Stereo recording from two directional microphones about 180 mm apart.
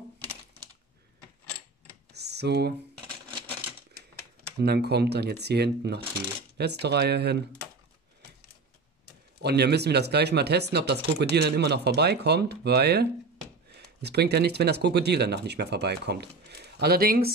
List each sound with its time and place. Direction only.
2.1 s computer keyboard: 65° right (ahead or behind)
4.6 s speech: 65° right (ahead or behind)
9.4 s speech: 65° right (ahead or behind)